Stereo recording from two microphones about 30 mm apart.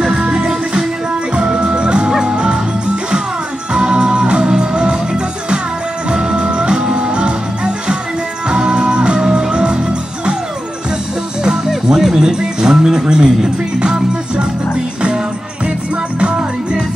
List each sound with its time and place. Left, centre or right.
0.0 s music: right
1.3 s music: right
3.7 s music: right
11.9 s music: centre
12.2 s music: right